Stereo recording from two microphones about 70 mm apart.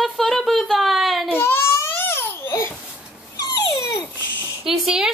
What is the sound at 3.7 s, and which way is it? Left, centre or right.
Babbling, left.